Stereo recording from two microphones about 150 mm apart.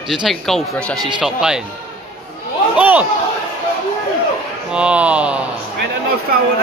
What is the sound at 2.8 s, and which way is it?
Speech, 10° right (ahead or behind).